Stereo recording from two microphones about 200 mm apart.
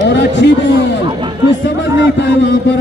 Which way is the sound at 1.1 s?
25° right (ahead or behind).